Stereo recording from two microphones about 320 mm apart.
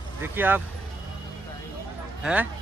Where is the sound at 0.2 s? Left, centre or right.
Centre.